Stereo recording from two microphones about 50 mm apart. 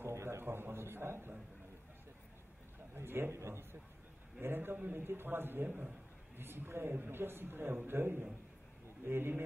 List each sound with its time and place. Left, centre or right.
0.0 s a sound: right
2.9 s a man's voice: right
4.4 s speech: right
5.7 s a man's voice: right
6.3 s speech: right